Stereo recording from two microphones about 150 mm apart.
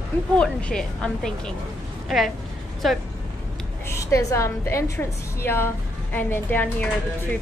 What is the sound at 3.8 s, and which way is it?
A woman's voice, 20° left (ahead or behind).